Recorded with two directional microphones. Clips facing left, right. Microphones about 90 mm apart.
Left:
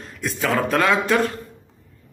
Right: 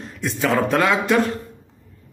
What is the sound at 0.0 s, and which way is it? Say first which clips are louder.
A man's voice: right 2 dB; 25° right (ahead or behind).